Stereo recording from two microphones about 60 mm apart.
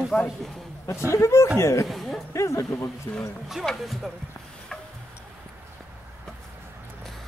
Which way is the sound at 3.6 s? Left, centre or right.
Centre.